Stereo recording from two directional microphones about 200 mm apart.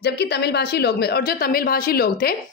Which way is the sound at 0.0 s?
55° left (ahead or behind).